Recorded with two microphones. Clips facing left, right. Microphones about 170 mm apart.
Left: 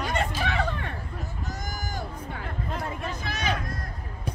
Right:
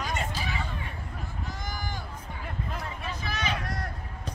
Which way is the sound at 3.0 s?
45° left (ahead or behind).